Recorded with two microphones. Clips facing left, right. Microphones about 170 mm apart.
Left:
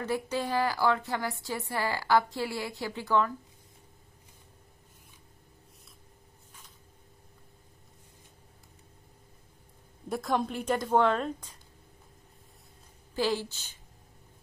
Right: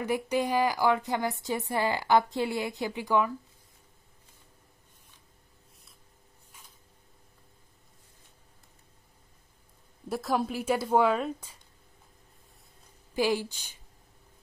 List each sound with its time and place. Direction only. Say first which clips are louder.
0.0 s a woman's voice: right 3 dB; 15° right (ahead or behind)
10.0 s a woman's voice: right 1 dB; centre (ahead or behind)
13.1 s a woman's voice: right 2 dB; 15° right (ahead or behind)